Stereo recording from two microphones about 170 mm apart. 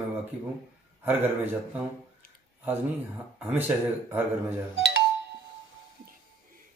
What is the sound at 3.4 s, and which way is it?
Speech, 10° right (ahead or behind).